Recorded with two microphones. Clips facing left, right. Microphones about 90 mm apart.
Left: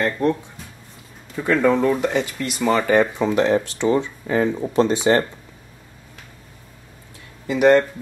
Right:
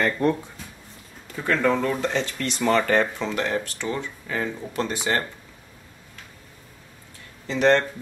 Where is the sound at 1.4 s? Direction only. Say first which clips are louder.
Left 5 dB; 15° left (ahead or behind).